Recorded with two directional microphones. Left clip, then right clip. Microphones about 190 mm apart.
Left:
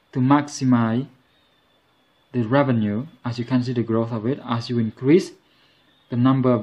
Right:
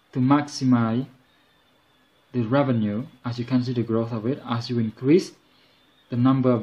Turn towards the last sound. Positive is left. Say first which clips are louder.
# left 2 dB
turn(degrees=20)  # may be behind; listen again after turning